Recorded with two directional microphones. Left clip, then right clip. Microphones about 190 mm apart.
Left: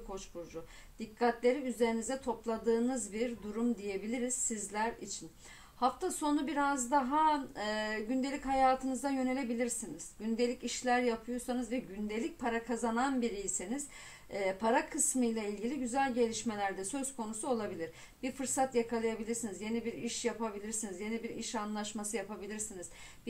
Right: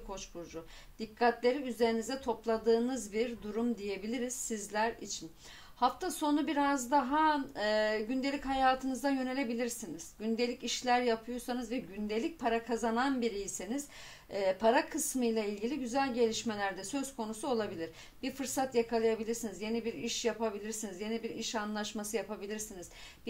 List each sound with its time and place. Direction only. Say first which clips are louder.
0.9 s a woman's voice: right 2 dB; 30° right (ahead or behind)